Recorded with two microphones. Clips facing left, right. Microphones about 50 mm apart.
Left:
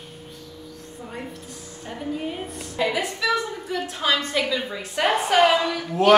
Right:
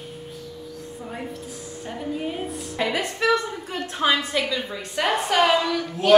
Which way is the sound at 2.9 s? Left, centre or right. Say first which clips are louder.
Right 6 dB; right.